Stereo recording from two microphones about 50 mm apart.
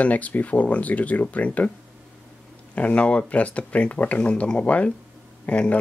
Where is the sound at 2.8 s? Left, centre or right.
Left.